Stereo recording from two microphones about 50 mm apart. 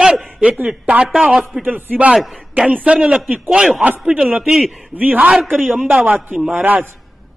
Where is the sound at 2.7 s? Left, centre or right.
Right.